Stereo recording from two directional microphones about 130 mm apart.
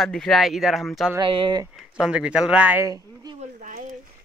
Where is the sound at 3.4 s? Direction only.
80° right.